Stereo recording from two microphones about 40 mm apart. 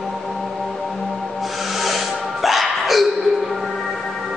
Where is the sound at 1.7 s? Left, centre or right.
Centre.